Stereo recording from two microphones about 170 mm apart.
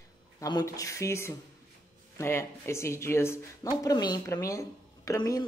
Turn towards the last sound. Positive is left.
turn(degrees=20)  # may be behind; listen again after turning